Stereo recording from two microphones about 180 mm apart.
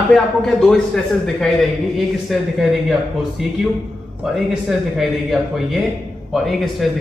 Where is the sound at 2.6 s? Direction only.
Centre (ahead or behind).